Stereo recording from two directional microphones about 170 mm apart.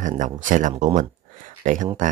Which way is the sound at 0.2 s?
50° right (ahead or behind).